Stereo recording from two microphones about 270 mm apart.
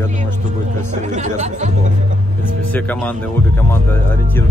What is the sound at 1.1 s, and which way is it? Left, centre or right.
Speech, right.